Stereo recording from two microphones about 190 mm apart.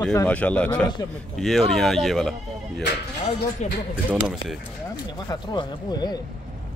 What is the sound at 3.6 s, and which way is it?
Speech, 40° left (ahead or behind).